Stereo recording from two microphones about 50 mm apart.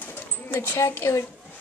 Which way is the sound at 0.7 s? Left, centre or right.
Left.